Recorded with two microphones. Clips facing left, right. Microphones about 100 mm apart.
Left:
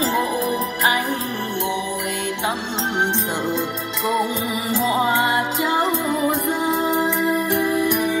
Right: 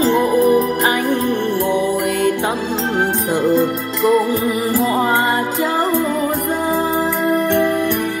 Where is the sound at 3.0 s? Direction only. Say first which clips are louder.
Right 6 dB; 5° right (ahead or behind).